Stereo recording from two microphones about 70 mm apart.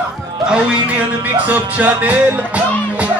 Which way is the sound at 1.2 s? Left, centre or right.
Right.